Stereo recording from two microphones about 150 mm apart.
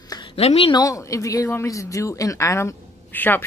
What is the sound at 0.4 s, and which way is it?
Speech, 40° left (ahead or behind).